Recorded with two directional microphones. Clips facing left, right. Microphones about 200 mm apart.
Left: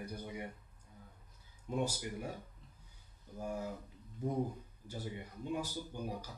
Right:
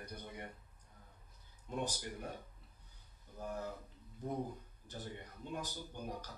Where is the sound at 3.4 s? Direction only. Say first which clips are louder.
Left 3 dB; 10° left (ahead or behind).